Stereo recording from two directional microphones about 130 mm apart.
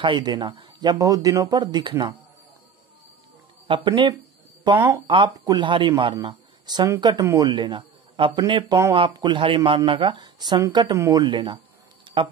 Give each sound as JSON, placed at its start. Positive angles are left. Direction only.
{"t": 0.0, "sound": "speech", "side_deg": -35}
{"t": 3.6, "sound": "speech", "side_deg": -40}
{"t": 4.7, "sound": "speech", "side_deg": -15}
{"t": 5.0, "sound": "a man's voice", "side_deg": -40}